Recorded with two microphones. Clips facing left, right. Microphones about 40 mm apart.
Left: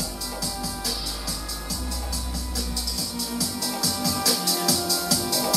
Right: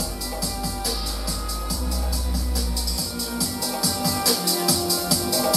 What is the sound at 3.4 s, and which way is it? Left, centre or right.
Music, centre.